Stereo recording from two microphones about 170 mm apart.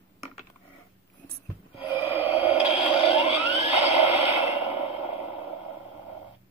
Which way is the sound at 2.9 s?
35° left (ahead or behind).